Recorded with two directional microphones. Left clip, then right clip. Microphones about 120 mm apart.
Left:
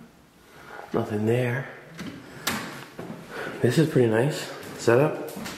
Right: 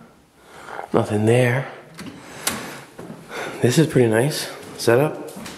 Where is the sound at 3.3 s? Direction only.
40° right (ahead or behind).